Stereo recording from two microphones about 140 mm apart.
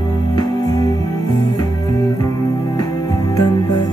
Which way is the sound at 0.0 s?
30° left (ahead or behind).